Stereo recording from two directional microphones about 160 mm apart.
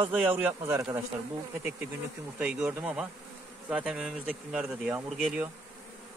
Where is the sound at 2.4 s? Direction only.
5° right (ahead or behind).